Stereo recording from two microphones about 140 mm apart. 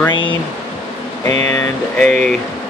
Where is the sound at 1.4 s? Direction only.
20° left (ahead or behind).